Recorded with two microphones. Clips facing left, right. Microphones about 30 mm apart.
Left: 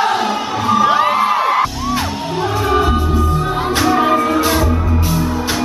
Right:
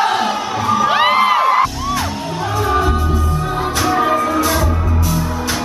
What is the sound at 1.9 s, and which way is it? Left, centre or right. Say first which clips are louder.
Music: left 2 dB; centre.